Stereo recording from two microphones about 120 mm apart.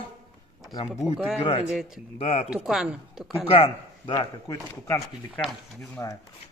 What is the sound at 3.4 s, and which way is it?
Speech, 50° left (ahead or behind).